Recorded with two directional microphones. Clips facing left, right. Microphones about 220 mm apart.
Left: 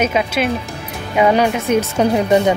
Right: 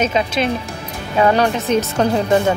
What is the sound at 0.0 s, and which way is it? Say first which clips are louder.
Speech: left 1 dB; 10° left (ahead or behind).